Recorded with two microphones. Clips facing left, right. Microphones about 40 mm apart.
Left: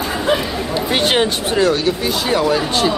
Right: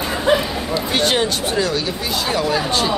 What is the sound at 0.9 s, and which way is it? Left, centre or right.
Speech, left.